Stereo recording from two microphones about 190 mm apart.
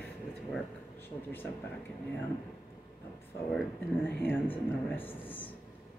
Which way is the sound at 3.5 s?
10° left (ahead or behind).